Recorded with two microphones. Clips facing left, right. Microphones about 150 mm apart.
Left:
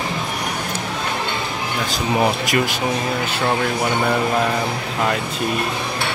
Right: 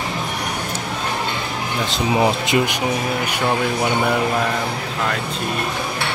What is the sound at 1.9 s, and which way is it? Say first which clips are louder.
Speech: right 1 dB; 20° right (ahead or behind).